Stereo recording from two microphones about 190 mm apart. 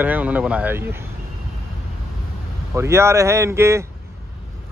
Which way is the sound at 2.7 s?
15° right (ahead or behind).